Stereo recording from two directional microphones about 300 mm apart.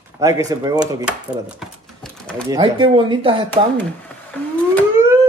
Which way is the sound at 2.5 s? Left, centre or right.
Centre.